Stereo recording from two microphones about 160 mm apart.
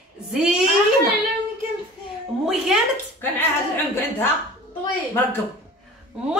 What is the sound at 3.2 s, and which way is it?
A woman's voice, 15° left (ahead or behind).